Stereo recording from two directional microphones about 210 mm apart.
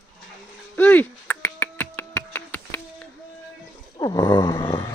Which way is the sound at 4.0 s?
20° left (ahead or behind).